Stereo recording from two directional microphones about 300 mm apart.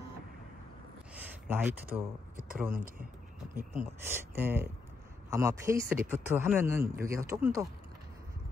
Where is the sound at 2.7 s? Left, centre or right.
Right.